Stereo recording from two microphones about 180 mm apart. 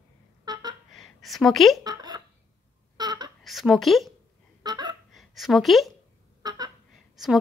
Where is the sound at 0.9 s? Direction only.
Centre (ahead or behind).